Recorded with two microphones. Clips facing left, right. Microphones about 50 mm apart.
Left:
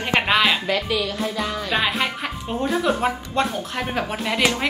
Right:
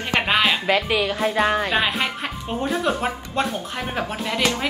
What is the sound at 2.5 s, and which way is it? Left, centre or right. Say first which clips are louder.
Child singing: left 1 dB; centre.